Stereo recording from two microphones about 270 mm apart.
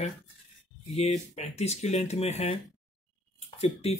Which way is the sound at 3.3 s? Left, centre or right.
Left.